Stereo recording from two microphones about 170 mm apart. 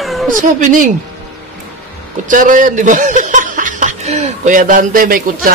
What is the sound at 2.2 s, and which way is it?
A man's voice, 50° right (ahead or behind).